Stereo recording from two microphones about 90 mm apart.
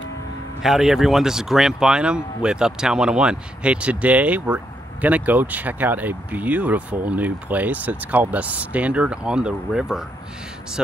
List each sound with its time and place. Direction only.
0.6 s speech: 5° right (ahead or behind)